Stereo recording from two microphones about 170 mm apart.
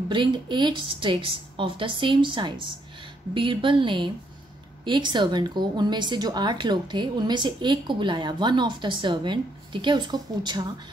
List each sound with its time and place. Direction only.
0.1 s a woman's voice: 25° right (ahead or behind)